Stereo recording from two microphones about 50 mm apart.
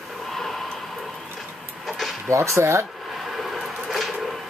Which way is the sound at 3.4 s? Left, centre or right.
Centre.